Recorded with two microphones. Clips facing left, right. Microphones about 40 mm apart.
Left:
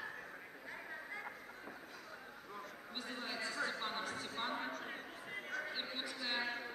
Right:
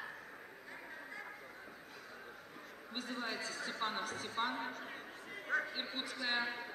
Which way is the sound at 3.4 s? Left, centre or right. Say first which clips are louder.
Left 3 dB; left.